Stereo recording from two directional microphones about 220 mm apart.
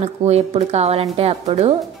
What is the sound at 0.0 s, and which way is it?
Speech, 30° right (ahead or behind).